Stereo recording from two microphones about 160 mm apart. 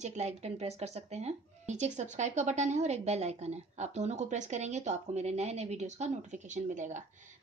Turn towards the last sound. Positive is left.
turn(degrees=-50)  # may be behind; listen again after turning